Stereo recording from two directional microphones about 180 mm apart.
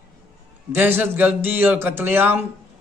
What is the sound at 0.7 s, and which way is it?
Speech, 10° right (ahead or behind).